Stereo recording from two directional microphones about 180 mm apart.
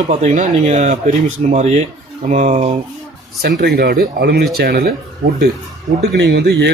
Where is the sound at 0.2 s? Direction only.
40° right (ahead or behind).